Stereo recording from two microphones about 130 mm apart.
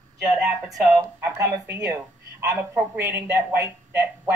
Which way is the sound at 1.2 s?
20° right (ahead or behind).